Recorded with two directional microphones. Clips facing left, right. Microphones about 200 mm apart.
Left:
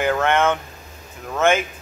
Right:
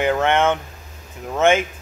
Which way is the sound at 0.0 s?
20° right (ahead or behind).